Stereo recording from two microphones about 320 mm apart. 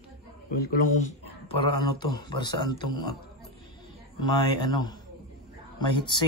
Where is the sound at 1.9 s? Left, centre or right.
Centre.